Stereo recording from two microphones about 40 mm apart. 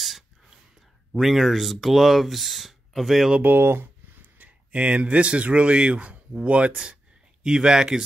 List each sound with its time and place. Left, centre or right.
1.1 s speech: centre
3.4 s a sound: right
4.4 s speech: right
7.4 s speech: centre